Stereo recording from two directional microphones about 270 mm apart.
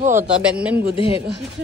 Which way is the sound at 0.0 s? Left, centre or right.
Right.